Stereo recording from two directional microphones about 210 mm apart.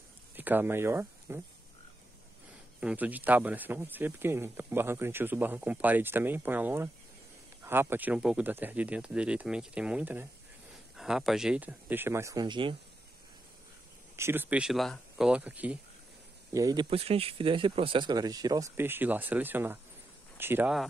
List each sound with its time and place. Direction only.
0.4 s speech: 10° right (ahead or behind)
2.8 s speech: 5° right (ahead or behind); by 12.7 s 20° right (ahead or behind)
14.1 s speech: 10° right (ahead or behind)
16.5 s speech: 15° right (ahead or behind)
16.9 s speech: 25° right (ahead or behind); by 20.8 s 5° right (ahead or behind)